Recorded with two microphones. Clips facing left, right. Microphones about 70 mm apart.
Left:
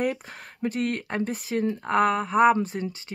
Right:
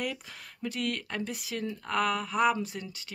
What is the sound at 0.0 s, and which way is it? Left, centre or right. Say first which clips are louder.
Speech: left 8 dB; left.